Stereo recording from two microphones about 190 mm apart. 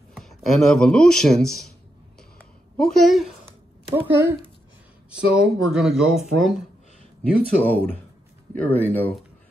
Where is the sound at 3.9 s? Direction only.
10° right (ahead or behind).